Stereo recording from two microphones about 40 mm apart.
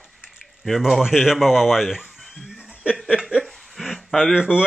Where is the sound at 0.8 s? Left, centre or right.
Centre.